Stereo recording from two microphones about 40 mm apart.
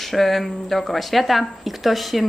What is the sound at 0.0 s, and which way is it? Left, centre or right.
Speech, centre.